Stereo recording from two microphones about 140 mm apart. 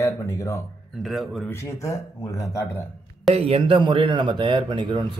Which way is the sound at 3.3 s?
45° right (ahead or behind).